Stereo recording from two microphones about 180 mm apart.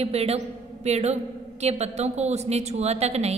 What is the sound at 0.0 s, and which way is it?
A woman's voice, 35° right (ahead or behind).